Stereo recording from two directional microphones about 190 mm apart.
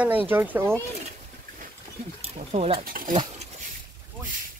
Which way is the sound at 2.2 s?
30° right (ahead or behind).